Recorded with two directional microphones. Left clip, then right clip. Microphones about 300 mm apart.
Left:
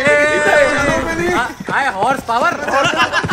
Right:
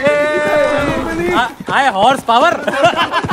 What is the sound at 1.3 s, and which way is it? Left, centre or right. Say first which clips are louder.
Speech: right 3 dB; right.